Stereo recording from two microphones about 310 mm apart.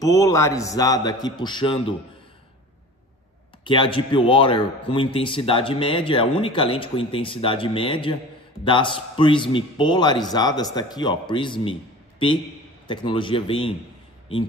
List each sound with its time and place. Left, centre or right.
0.0 s speech: centre
3.6 s speech: centre